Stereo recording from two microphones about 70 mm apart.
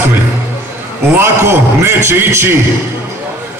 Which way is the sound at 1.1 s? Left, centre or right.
Right.